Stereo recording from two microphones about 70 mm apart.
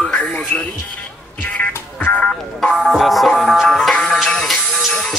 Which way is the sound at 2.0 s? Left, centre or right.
Left.